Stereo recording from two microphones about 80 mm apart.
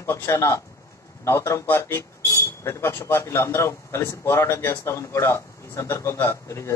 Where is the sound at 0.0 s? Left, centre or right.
Left.